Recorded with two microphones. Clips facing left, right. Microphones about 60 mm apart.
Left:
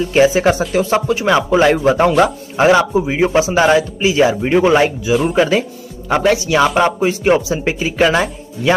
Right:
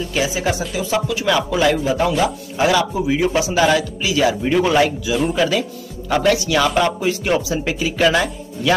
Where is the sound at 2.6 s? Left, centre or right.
Left.